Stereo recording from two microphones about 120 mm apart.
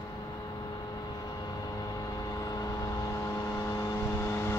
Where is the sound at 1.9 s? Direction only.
30° left (ahead or behind).